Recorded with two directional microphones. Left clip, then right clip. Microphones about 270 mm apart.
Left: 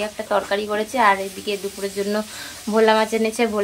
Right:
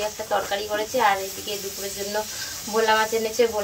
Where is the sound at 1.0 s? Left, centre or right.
Centre.